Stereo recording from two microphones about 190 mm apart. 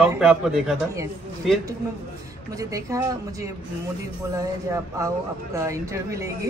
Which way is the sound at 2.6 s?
20° right (ahead or behind).